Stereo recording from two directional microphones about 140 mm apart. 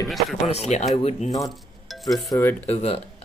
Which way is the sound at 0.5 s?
50° left (ahead or behind).